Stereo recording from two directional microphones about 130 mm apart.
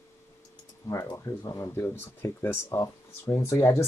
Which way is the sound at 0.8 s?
25° left (ahead or behind).